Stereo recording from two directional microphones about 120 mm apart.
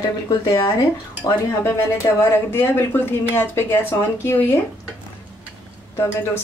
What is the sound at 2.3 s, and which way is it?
Speech, 20° left (ahead or behind).